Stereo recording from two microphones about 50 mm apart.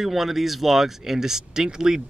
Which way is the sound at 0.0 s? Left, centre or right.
Centre.